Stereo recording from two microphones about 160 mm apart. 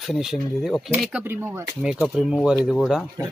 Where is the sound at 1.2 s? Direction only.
15° right (ahead or behind).